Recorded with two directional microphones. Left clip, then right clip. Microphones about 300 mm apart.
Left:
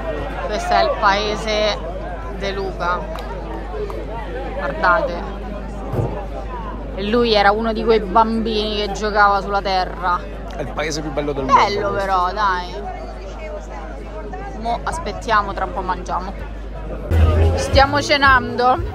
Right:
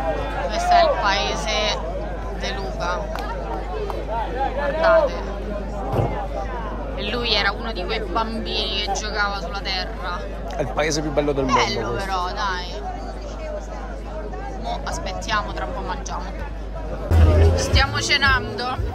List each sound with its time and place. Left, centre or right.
0.5 s chatter: centre
1.0 s a man's voice: centre
4.6 s a man's voice: centre
7.0 s a man's voice: centre
10.6 s speech: right
11.4 s a man's voice: centre
14.6 s a man's voice: centre
17.6 s a man's voice: centre